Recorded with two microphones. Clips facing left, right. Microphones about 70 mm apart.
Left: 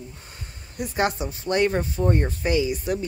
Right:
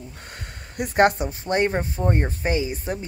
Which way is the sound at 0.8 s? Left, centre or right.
Right.